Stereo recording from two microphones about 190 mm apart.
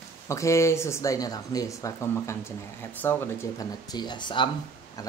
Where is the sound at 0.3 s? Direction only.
15° left (ahead or behind).